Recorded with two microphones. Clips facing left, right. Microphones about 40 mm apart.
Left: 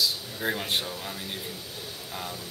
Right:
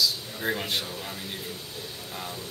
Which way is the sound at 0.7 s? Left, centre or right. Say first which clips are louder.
Left 1 dB; centre.